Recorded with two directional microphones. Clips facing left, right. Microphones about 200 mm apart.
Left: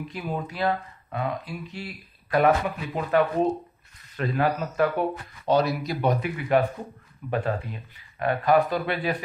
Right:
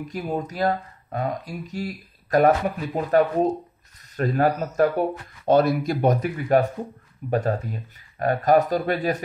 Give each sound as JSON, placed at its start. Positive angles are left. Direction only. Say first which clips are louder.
{"t": 0.1, "sound": "speech", "louder": "right 6 dB", "side_deg": -40}